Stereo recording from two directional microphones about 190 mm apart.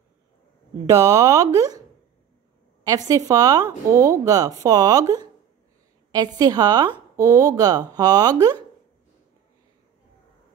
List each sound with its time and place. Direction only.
0.8 s speech: 15° right (ahead or behind)
3.1 s a woman's voice: 20° right (ahead or behind)